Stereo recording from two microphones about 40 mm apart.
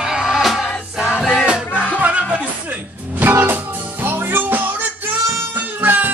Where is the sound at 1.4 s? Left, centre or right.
Right.